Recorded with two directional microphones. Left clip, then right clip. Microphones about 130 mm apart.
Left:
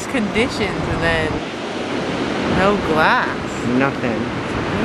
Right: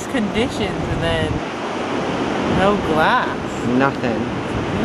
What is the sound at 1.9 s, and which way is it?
Ocean, 15° left (ahead or behind).